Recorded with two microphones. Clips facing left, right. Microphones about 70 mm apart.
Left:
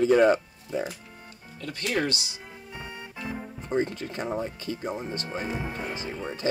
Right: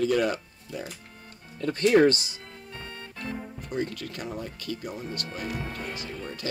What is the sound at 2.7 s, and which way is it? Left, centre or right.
Music, centre.